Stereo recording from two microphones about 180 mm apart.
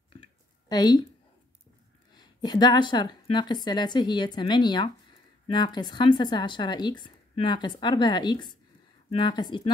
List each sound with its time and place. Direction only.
0.7 s speech: 20° left (ahead or behind)
2.1 s speech: 20° left (ahead or behind)